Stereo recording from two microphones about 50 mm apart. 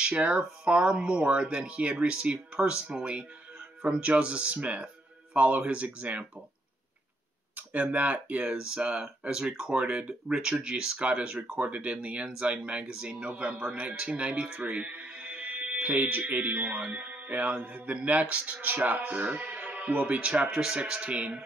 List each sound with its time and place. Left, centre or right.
0.7 s speech: right
7.5 s speech: right
8.5 s speech: centre